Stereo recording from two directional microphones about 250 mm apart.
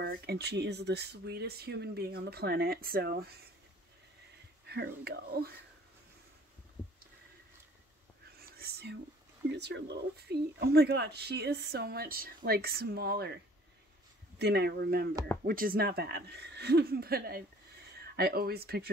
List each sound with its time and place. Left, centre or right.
0.0 s speech: right
4.6 s speech: right
8.4 s whispering: right
9.5 s speech: right
14.4 s speech: right